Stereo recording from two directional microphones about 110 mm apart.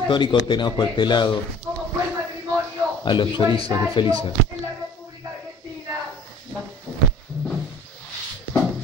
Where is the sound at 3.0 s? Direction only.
45° left (ahead or behind).